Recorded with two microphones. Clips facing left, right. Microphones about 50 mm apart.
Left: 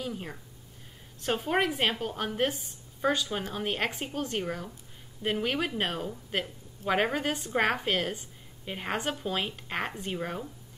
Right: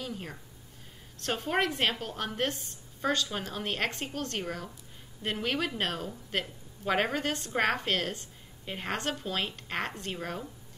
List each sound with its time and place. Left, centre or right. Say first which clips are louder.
0.0 s a woman's voice: left 2 dB; centre